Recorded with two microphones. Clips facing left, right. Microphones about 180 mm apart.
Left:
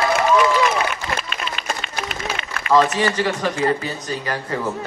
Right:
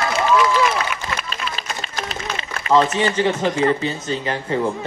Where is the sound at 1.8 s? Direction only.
35° right (ahead or behind).